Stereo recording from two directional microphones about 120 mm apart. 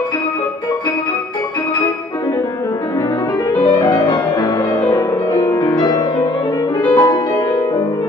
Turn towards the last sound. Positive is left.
turn(degrees=30)  # may be behind; listen again after turning